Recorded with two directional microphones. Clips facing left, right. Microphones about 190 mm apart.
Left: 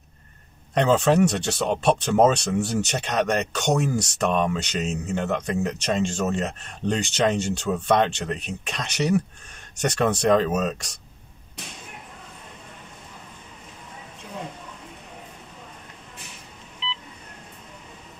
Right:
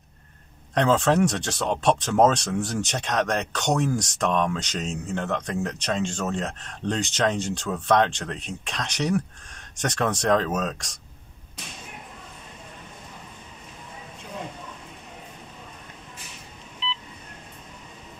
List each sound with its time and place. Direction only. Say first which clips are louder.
0.7 s speech: left 2 dB; 5° left (ahead or behind)